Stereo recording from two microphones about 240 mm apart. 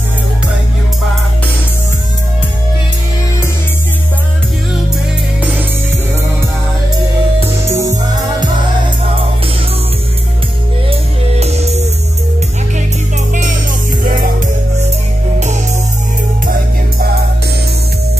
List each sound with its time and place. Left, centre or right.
7.6 s music: centre
10.9 s music: right
13.3 s music: right